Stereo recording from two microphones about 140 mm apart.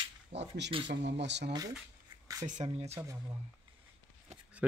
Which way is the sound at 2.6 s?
35° right (ahead or behind).